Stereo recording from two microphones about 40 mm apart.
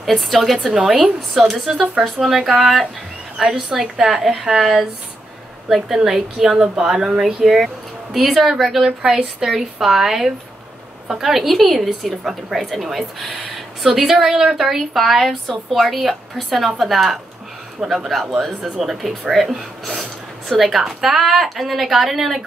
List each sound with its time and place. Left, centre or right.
0.0 s speech: centre
1.7 s speech: right
2.4 s speech: centre
9.0 s speech: centre
9.5 s speech: centre